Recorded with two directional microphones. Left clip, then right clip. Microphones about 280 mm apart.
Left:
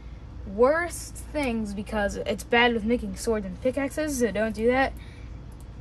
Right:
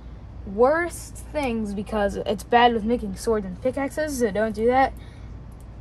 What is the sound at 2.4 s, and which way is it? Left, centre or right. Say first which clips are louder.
Speech: right 4 dB; centre.